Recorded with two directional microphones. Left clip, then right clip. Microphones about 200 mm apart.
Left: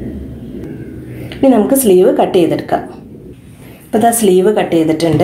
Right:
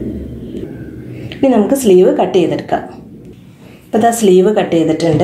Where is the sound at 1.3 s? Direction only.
Centre (ahead or behind).